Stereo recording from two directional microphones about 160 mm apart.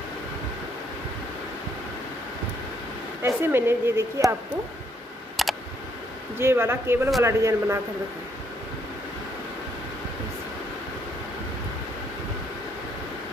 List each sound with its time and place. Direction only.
3.2 s a woman's voice: 15° right (ahead or behind)
5.4 s a sound: centre (ahead or behind)
6.3 s a woman's voice: 15° right (ahead or behind)